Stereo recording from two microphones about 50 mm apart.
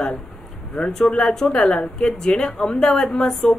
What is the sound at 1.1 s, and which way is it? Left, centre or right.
A woman's voice, centre.